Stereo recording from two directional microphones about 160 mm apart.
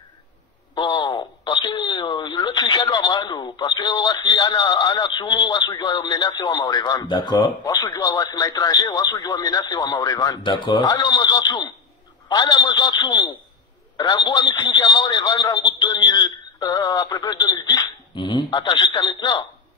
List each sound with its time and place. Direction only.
0.7 s a man's voice: 30° left (ahead or behind)